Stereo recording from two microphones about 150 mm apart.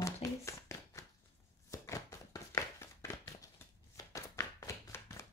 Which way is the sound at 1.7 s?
20° left (ahead or behind).